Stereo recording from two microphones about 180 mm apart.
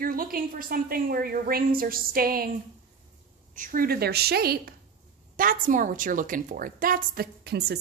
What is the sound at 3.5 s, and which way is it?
A woman's voice, 50° right (ahead or behind).